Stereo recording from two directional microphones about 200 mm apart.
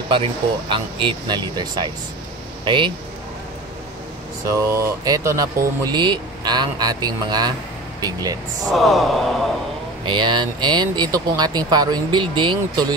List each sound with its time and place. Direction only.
0.1 s speech: 25° right (ahead or behind)
4.5 s speech: 15° right (ahead or behind)
8.6 s a sound: centre (ahead or behind)
10.0 s speech: 25° right (ahead or behind)